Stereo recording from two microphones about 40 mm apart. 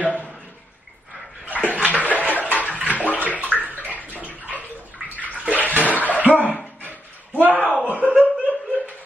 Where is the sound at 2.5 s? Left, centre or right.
Left.